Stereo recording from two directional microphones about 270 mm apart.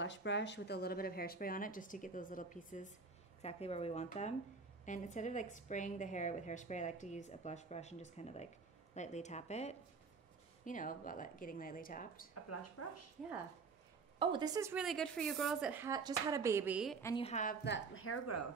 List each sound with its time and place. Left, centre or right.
0.0 s a woman's voice: left
12.4 s speech: left
14.2 s a woman's voice: centre
17.0 s a woman's voice: centre
17.9 s speech: left